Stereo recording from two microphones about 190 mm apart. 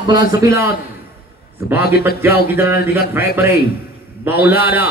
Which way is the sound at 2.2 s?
10° right (ahead or behind).